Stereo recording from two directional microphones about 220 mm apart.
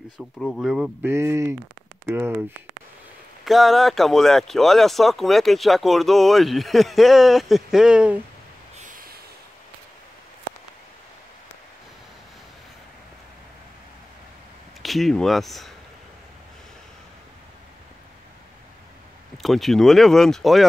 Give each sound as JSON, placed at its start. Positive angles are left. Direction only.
{"t": 0.4, "sound": "speech", "side_deg": 0}
{"t": 3.4, "sound": "speech", "side_deg": 0}
{"t": 8.7, "sound": "snort", "side_deg": -35}
{"t": 14.8, "sound": "speech", "side_deg": 0}
{"t": 19.3, "sound": "speech", "side_deg": 0}